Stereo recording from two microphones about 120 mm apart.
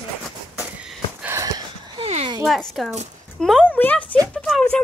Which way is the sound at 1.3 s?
30° right (ahead or behind).